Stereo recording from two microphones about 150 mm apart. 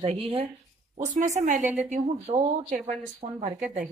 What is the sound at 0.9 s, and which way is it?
A woman's voice, 55° right (ahead or behind).